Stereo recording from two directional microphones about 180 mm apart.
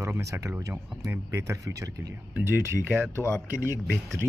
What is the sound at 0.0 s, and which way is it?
Speech, 15° right (ahead or behind).